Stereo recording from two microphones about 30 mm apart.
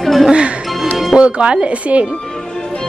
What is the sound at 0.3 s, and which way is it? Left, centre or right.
Music, right.